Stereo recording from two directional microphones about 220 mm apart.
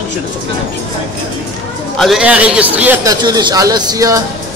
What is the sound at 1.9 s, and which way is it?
A man's voice, centre (ahead or behind).